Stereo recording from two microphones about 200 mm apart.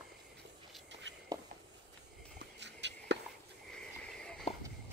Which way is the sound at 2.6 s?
60° right (ahead or behind).